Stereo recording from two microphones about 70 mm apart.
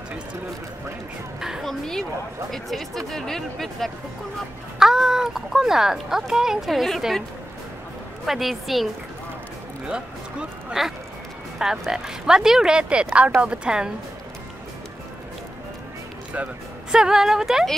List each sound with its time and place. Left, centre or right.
1.4 s speech: centre
1.7 s speech: centre
4.7 s speech: centre
8.3 s speech: centre
10.8 s speech: centre
16.4 s speech: centre
16.9 s speech: centre